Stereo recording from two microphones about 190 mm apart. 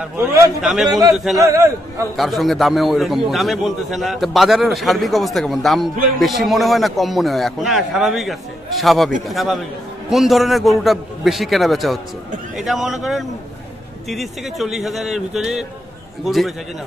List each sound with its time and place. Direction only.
0.0 s a man's voice: 15° right (ahead or behind)
0.6 s a man's voice: centre (ahead or behind)
1.4 s a man's voice: 15° right (ahead or behind)
2.1 s a man's voice: centre (ahead or behind)